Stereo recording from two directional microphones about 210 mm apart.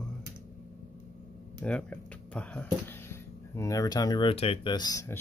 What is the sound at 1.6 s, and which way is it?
Speech, 5° left (ahead or behind).